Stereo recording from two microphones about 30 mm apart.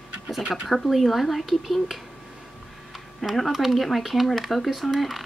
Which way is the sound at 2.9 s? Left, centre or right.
Centre.